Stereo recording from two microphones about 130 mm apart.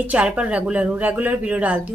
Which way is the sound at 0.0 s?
10° right (ahead or behind).